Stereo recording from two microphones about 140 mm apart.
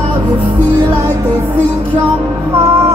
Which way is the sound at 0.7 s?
25° right (ahead or behind).